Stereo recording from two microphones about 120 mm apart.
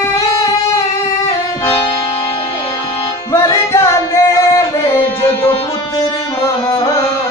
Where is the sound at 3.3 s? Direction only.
25° left (ahead or behind).